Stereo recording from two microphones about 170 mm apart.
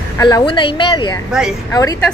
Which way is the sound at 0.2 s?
25° left (ahead or behind).